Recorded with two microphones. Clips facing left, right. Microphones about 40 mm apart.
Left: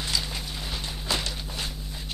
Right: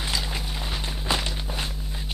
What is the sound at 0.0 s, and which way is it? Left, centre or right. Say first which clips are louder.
Walk: right 1 dB; centre.